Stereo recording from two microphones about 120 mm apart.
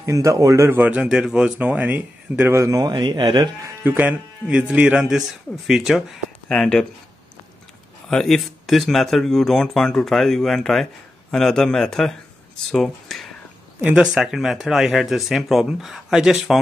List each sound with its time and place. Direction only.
0.0 s speech: 25° right (ahead or behind)
0.7 s speech: 10° right (ahead or behind)
2.5 s speech: 25° right (ahead or behind)
3.8 s speech: 15° right (ahead or behind); by 6.9 s 5° left (ahead or behind)
8.1 s speech: 5° left (ahead or behind)